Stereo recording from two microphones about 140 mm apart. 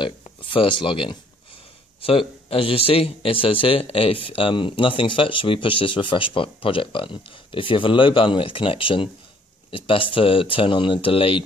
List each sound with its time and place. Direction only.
0.0 s speech: 35° left (ahead or behind)